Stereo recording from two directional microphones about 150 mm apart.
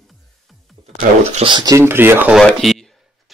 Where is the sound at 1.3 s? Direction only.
35° right (ahead or behind).